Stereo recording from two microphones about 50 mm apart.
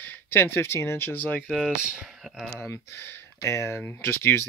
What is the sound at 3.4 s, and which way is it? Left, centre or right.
Speech, left.